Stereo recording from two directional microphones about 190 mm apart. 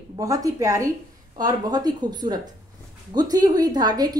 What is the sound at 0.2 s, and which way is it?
A woman's voice, 20° right (ahead or behind).